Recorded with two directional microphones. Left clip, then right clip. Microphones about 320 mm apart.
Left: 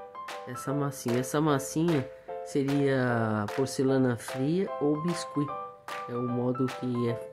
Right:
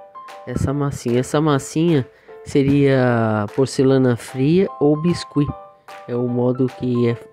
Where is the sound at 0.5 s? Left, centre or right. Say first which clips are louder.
Right 10 dB; centre.